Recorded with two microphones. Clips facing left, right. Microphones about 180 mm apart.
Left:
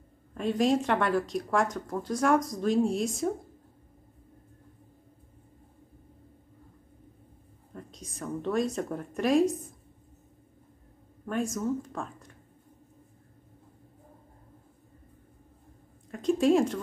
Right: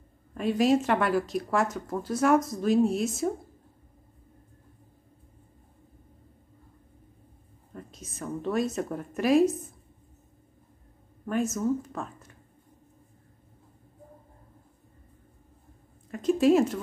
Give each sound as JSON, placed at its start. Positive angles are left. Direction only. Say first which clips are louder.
{"t": 0.3, "sound": "speech", "louder": "right 2 dB", "side_deg": -5}
{"t": 7.7, "sound": "a woman's voice", "louder": "right 1 dB", "side_deg": -5}
{"t": 11.2, "sound": "speech", "louder": "right 3 dB", "side_deg": -5}
{"t": 16.1, "sound": "speech", "louder": "right 2 dB", "side_deg": -5}